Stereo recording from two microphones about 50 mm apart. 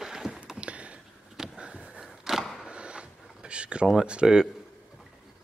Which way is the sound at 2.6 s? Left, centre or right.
Right.